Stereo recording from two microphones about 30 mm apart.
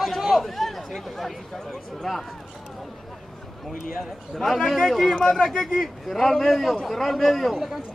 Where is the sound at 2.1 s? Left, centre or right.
Centre.